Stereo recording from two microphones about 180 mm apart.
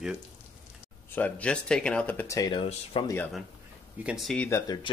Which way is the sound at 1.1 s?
10° left (ahead or behind).